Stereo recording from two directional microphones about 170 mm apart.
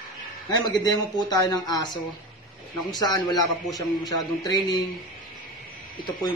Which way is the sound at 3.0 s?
25° left (ahead or behind).